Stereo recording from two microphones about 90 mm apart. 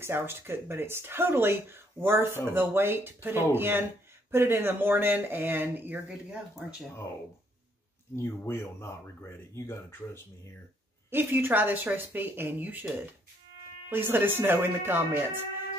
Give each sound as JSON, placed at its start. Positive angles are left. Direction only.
{"t": 0.0, "sound": "speech", "side_deg": -25}
{"t": 6.0, "sound": "speech", "side_deg": -10}
{"t": 8.2, "sound": "speech", "side_deg": 30}
{"t": 11.1, "sound": "speech", "side_deg": -25}